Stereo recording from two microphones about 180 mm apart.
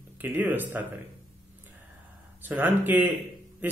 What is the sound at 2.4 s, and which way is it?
A man's voice, 10° right (ahead or behind).